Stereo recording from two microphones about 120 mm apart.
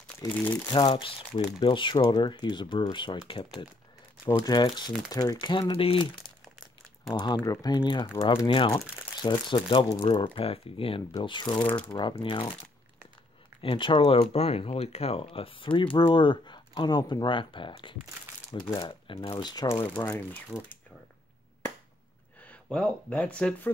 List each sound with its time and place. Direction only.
0.3 s speech: 10° left (ahead or behind)
0.7 s speech: 40° left (ahead or behind)
4.5 s speech: 35° left (ahead or behind)
8.5 s speech: 50° left (ahead or behind)
9.2 s speech: 40° left (ahead or behind)
13.6 s speech: 45° left (ahead or behind)
14.3 s speech: 60° left (ahead or behind); by 19.7 s 35° left (ahead or behind)
20.0 s speech: 15° left (ahead or behind)
20.5 s speech: centre (ahead or behind)
22.4 s speech: 10° left (ahead or behind)